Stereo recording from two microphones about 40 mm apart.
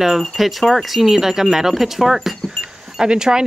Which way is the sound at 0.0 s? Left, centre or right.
Centre.